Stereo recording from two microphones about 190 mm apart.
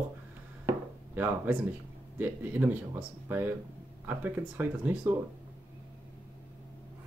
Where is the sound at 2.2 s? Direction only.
10° right (ahead or behind).